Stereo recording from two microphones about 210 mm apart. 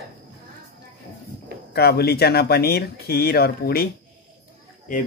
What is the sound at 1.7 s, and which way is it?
Speech, 50° left (ahead or behind).